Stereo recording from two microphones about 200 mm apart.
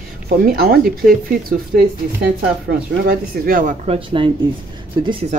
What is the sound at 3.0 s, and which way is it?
Speech, 45° right (ahead or behind).